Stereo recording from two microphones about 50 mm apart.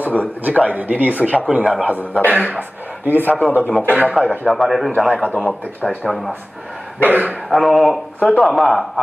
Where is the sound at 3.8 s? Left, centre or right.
Centre.